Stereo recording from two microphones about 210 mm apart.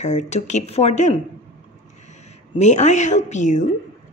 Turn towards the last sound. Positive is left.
turn(degrees=35)  # may be behind; listen again after turning